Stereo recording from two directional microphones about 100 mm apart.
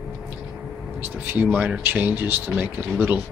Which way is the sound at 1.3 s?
20° right (ahead or behind).